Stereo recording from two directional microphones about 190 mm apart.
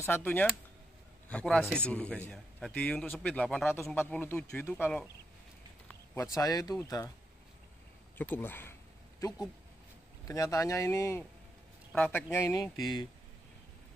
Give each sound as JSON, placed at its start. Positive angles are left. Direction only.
{"t": 0.0, "sound": "a man's voice", "side_deg": 10}
{"t": 6.3, "sound": "speech", "side_deg": 20}
{"t": 8.2, "sound": "speech", "side_deg": 10}
{"t": 10.2, "sound": "speech", "side_deg": 15}